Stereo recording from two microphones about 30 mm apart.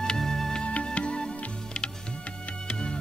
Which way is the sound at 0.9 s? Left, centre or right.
Left.